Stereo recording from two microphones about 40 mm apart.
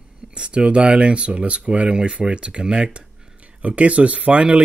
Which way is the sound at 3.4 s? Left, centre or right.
Right.